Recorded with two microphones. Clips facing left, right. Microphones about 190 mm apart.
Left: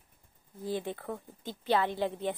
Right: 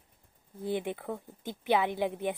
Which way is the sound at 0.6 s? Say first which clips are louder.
Right 2 dB; 20° right (ahead or behind).